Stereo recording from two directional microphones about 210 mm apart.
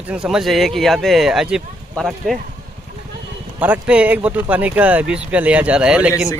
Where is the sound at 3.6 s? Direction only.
5° right (ahead or behind).